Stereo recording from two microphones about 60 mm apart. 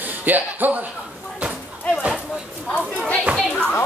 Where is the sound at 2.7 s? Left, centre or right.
Left.